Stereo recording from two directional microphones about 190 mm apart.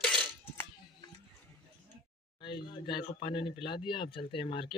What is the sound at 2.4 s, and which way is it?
Speech, 25° left (ahead or behind).